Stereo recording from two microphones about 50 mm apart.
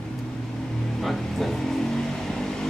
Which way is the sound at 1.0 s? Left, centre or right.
Centre.